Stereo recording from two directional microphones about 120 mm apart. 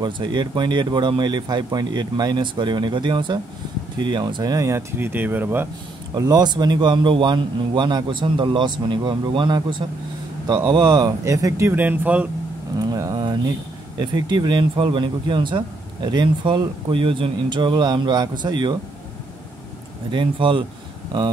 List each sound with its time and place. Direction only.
0.0 s speech: 40° right (ahead or behind); by 5.7 s 15° right (ahead or behind)
6.1 s speech: 35° right (ahead or behind); by 12.3 s 15° right (ahead or behind)
12.7 s vehicle: 30° right (ahead or behind)
13.9 s speech: 40° right (ahead or behind)
20.1 s speech: 45° right (ahead or behind)